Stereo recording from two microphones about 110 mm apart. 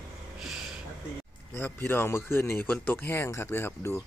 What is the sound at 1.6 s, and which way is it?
Speech, 20° left (ahead or behind).